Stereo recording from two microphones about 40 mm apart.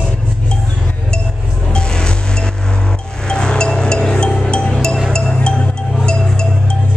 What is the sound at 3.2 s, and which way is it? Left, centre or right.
Music, left.